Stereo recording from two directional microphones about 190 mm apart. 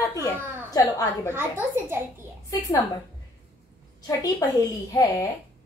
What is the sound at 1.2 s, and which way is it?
Speech, 10° right (ahead or behind).